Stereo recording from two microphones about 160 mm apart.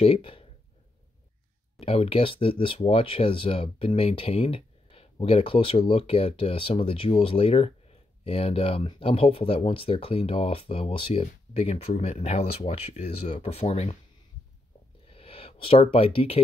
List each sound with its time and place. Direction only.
0.0 s speech: 35° left (ahead or behind)
1.8 s speech: 35° left (ahead or behind)
15.0 s a sound: 35° left (ahead or behind)